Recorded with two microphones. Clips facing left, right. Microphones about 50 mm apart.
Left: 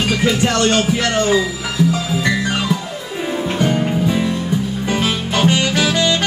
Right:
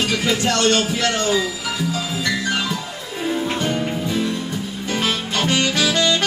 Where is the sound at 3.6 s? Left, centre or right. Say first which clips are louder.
Left 5 dB; centre.